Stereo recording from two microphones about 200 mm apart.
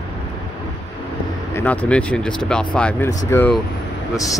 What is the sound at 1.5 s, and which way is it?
Speech, 10° left (ahead or behind).